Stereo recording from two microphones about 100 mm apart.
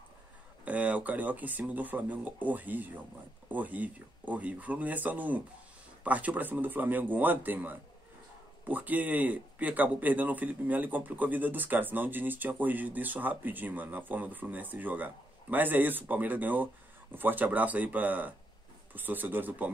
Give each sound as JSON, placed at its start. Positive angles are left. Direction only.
{"t": 0.7, "sound": "a man's voice", "side_deg": -15}